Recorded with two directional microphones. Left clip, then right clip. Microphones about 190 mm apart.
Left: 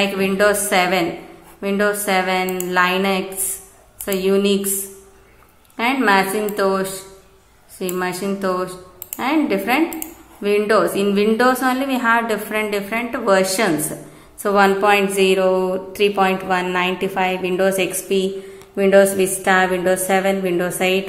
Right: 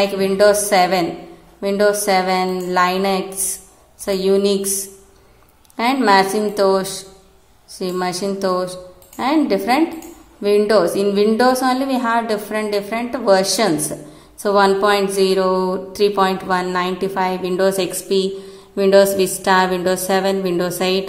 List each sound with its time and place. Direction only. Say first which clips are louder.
0.0 s a woman's voice: right 3 dB; 20° right (ahead or behind)
5.8 s a woman's voice: right 2 dB; 20° right (ahead or behind)
7.9 s a woman's voice: right 2 dB; 20° right (ahead or behind)